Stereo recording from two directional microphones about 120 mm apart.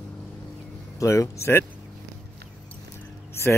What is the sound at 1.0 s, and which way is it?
Speech, 25° left (ahead or behind).